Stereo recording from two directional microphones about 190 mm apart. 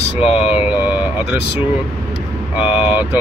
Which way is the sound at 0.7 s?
5° right (ahead or behind).